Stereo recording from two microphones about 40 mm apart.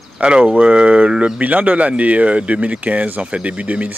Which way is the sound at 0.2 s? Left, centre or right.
Right.